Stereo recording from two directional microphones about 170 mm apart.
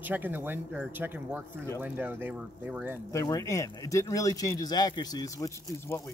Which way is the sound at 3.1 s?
20° left (ahead or behind).